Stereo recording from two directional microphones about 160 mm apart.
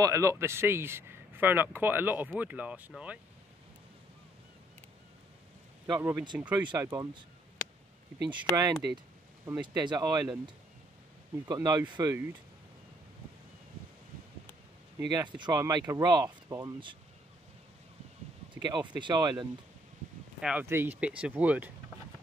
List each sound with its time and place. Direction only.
0.0 s speech: 20° right (ahead or behind)
5.9 s speech: 15° right (ahead or behind)
8.3 s speech: 25° right (ahead or behind)
11.4 s speech: 25° right (ahead or behind)
15.0 s speech: 25° right (ahead or behind)
18.5 s speech: 30° right (ahead or behind)
20.3 s speech: 5° right (ahead or behind)